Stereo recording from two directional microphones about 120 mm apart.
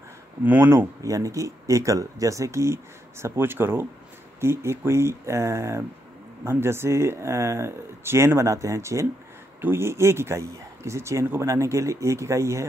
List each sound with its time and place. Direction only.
0.4 s speech: 15° right (ahead or behind)